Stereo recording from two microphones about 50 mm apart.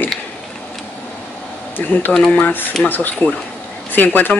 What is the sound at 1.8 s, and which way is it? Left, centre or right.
Speech, left.